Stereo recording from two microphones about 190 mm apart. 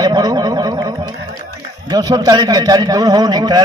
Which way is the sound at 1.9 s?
20° right (ahead or behind).